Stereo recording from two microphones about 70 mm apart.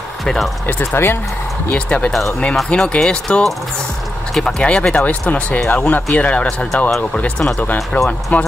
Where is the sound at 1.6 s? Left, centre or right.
Centre.